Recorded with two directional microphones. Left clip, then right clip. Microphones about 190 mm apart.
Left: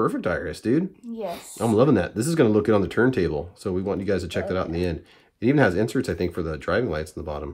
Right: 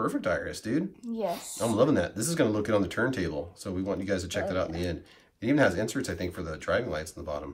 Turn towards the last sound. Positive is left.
turn(degrees=55)  # may be behind; listen again after turning